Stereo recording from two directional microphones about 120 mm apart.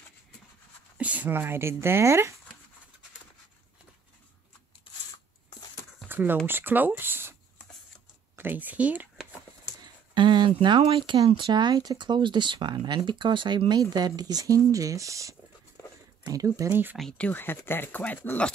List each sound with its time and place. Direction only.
0.9 s speech: 10° right (ahead or behind)
6.0 s speech: 15° right (ahead or behind)
8.4 s speech: 15° right (ahead or behind)
10.1 s a sound: 40° right (ahead or behind)
10.8 s speech: 50° right (ahead or behind); by 16.7 s 30° right (ahead or behind)
17.2 s speech: 15° left (ahead or behind)